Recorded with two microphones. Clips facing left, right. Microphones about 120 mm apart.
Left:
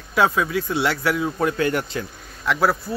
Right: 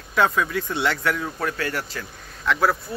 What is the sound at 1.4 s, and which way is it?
Speech, 20° left (ahead or behind).